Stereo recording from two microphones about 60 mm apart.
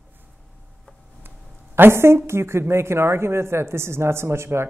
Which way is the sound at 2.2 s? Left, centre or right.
Right.